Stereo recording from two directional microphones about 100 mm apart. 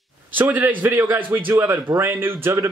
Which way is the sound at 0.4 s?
20° right (ahead or behind).